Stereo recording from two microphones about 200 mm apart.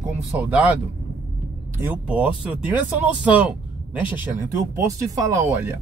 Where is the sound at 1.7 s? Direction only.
10° right (ahead or behind).